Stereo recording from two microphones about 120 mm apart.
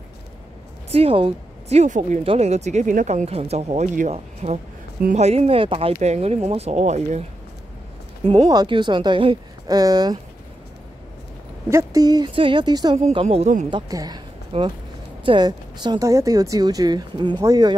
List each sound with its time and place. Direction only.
0.8 s speech: 55° right (ahead or behind)
1.8 s speech: 85° right
2.2 s speech: 65° right (ahead or behind)
8.2 s speech: 50° right (ahead or behind)
9.7 s speech: 30° right (ahead or behind)
11.7 s speech: 30° right (ahead or behind)
13.1 s a woman's voice: 55° right (ahead or behind)
13.7 s speech: 35° right (ahead or behind)
14.5 s a woman's voice: 50° right (ahead or behind)
15.2 s speech: 40° right (ahead or behind)